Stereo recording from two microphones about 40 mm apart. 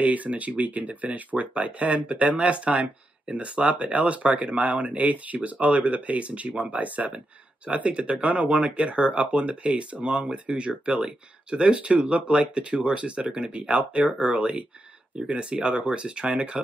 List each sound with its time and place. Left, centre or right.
0.0 s speech: right